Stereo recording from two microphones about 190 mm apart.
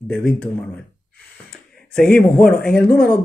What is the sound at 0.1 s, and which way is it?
Speech, 5° left (ahead or behind).